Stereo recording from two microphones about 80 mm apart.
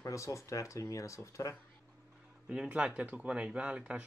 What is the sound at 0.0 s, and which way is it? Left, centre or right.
Speech, left.